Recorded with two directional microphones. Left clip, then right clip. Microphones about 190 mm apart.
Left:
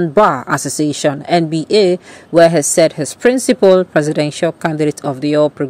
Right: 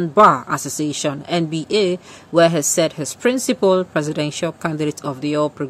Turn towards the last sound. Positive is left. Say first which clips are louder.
# left 7 dB
turn(degrees=25)  # may be behind; listen again after turning